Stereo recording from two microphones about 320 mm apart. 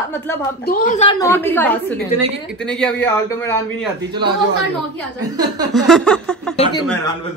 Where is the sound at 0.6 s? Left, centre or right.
Left; by 3.8 s centre.